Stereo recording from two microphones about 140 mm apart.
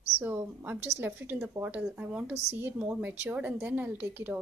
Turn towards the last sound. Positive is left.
turn(degrees=-15)  # may be behind; listen again after turning